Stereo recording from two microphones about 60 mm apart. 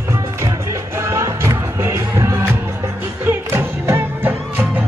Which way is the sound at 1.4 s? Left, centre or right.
Right.